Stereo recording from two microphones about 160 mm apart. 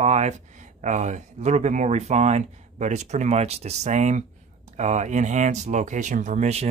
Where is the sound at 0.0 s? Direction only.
45° right (ahead or behind).